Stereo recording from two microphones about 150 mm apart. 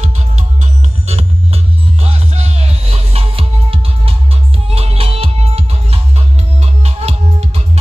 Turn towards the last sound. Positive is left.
turn(degrees=-45)  # may be behind; listen again after turning